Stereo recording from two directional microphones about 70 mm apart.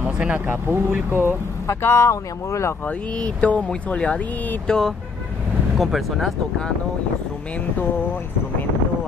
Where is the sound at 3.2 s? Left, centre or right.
Centre.